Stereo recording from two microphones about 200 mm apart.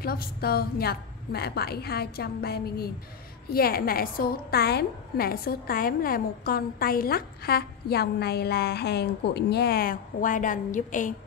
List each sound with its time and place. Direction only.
0.0 s a woman's voice: 50° left (ahead or behind)